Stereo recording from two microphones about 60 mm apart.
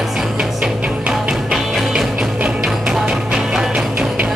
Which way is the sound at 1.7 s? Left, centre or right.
Centre.